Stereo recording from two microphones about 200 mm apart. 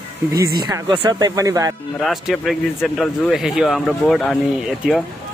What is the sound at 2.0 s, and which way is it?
Speech, centre (ahead or behind).